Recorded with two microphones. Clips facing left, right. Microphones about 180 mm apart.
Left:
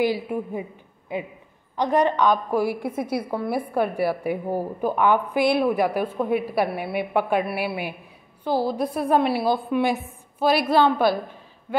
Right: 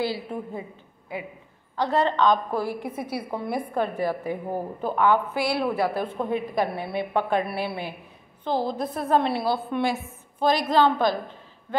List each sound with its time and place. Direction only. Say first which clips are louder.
0.0 s a woman's voice: left 5 dB; 15° left (ahead or behind)